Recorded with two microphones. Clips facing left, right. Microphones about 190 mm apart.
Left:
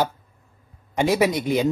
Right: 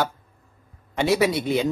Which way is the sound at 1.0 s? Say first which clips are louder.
Left 1 dB; 15° left (ahead or behind).